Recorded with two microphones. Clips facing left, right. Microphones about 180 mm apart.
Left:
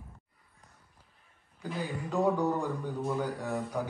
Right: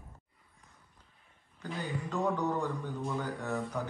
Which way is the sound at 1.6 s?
10° left (ahead or behind).